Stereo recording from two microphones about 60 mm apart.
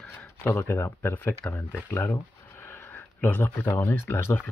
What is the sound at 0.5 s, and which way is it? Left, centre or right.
Speech, left.